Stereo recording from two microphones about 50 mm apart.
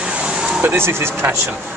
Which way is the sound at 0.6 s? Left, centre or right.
Right.